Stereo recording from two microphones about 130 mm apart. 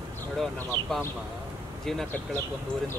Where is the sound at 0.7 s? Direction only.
40° right (ahead or behind).